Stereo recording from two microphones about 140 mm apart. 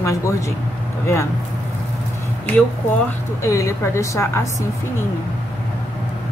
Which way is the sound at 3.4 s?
20° left (ahead or behind).